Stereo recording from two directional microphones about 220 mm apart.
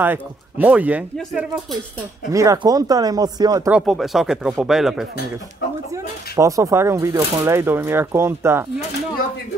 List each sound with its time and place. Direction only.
0.0 s speech: 10° right (ahead or behind)
2.3 s speech: 15° right (ahead or behind)
3.7 s speech: centre (ahead or behind)
6.3 s speech: 15° right (ahead or behind)